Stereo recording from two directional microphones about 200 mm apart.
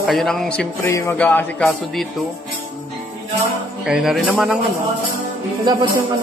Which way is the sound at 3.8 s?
5° right (ahead or behind).